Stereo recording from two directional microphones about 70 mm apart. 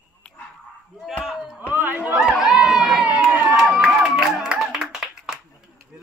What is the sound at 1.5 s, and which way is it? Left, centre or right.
Chatter, right.